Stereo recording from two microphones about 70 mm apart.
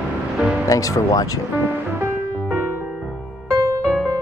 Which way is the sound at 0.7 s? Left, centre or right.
Left.